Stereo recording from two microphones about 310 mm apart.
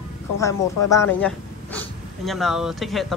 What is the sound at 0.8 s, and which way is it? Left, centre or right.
Speech, centre.